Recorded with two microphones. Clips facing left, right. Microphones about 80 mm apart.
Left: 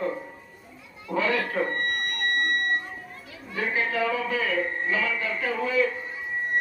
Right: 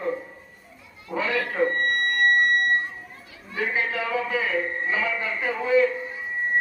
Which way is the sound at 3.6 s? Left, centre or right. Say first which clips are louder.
Even; centre.